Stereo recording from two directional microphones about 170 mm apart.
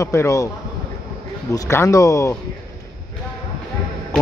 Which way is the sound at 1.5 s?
15° left (ahead or behind).